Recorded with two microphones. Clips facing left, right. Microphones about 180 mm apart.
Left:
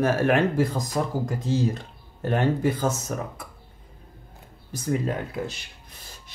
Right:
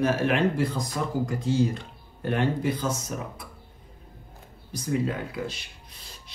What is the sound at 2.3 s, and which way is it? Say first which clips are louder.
Speech: left 2 dB; 45° left (ahead or behind).